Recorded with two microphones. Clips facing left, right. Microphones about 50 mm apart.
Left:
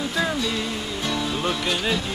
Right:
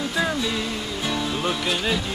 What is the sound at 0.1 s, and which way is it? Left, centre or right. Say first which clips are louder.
Music: right 1 dB; centre.